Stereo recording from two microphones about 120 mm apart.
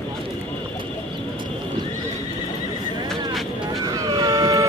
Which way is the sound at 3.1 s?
Centre (ahead or behind).